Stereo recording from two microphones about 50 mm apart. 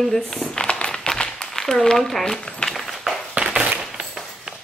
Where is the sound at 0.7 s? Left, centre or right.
Left.